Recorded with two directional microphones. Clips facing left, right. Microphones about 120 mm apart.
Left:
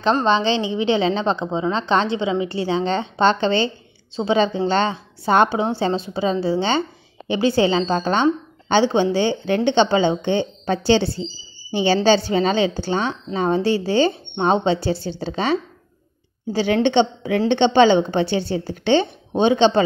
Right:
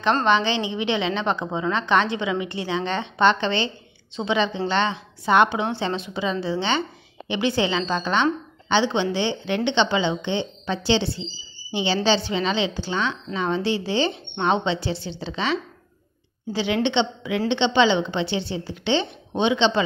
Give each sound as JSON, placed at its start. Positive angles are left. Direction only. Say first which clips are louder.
{"t": 0.2, "sound": "a woman's voice", "louder": "left 2 dB", "side_deg": 30}